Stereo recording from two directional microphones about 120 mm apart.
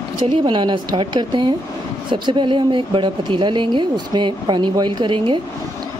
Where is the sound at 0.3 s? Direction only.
45° right (ahead or behind).